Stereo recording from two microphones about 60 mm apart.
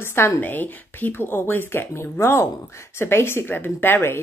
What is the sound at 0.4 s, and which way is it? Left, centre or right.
Speech, left.